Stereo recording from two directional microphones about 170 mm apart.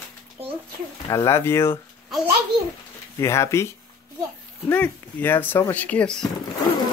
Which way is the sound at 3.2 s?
15° left (ahead or behind).